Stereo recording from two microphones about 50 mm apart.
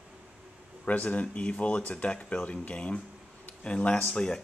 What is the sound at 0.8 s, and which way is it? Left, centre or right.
Speech, left.